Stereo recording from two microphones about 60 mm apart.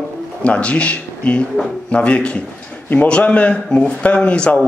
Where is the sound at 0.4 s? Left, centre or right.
Left.